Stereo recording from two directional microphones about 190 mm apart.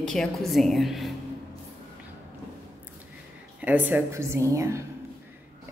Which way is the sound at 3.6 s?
10° right (ahead or behind).